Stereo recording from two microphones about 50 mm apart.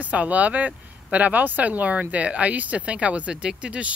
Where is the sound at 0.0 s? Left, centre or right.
Right.